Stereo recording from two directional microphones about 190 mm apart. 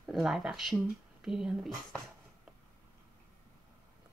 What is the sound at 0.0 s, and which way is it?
Speech, centre (ahead or behind).